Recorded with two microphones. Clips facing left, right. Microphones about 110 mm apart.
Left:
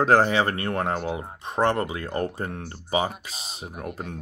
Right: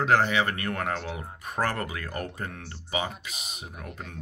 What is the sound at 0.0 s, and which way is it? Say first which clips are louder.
Speech: left 4 dB; 35° left (ahead or behind).